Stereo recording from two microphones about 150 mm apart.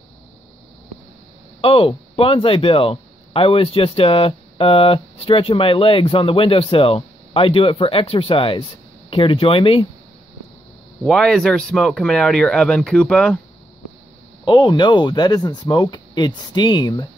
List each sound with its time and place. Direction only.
1.6 s speech: 40° left (ahead or behind)
11.1 s speech: 5° left (ahead or behind)
14.4 s speech: 30° left (ahead or behind)